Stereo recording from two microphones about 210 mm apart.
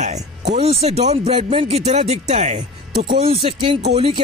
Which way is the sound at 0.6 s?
30° right (ahead or behind).